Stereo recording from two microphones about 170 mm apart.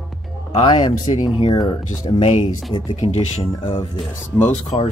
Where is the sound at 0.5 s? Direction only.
30° left (ahead or behind).